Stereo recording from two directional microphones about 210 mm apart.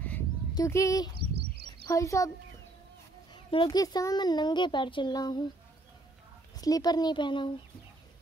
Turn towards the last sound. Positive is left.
turn(degrees=20)  # may be behind; listen again after turning